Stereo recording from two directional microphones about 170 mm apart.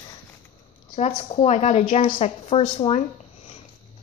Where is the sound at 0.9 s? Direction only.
40° left (ahead or behind).